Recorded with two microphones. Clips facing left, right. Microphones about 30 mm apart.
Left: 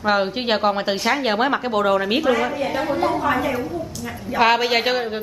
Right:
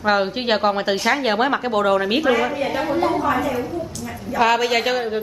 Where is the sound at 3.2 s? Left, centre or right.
Centre.